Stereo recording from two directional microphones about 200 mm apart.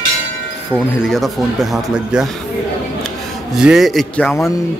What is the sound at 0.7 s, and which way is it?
A man's voice, centre (ahead or behind).